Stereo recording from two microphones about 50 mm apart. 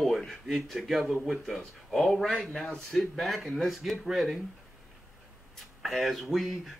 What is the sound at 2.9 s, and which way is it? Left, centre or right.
Speech, centre.